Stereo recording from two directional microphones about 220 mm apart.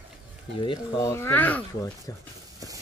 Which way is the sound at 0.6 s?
15° left (ahead or behind).